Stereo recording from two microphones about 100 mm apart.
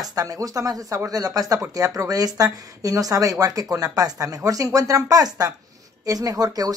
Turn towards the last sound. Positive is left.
turn(degrees=-40)  # may be behind; listen again after turning